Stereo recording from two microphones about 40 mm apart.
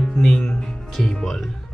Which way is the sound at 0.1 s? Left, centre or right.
Centre.